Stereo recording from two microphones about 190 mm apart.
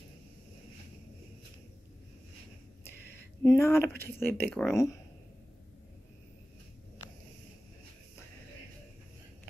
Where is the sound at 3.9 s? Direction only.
10° left (ahead or behind).